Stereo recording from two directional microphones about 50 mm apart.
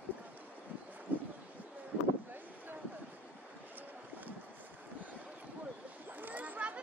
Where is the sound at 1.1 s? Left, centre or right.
Right.